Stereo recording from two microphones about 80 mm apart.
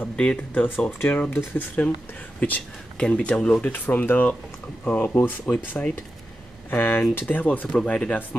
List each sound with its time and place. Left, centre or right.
0.0 s speech: centre